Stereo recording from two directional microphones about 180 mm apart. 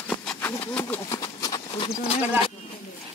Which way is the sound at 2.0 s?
30° left (ahead or behind).